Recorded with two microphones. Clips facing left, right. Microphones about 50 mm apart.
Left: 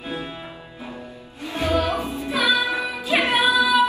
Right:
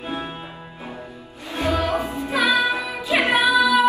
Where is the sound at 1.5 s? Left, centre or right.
Right.